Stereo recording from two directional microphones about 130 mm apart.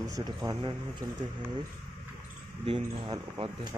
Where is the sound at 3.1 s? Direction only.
40° right (ahead or behind).